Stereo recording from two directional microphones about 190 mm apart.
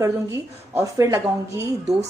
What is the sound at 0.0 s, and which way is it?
A woman's voice, 15° right (ahead or behind).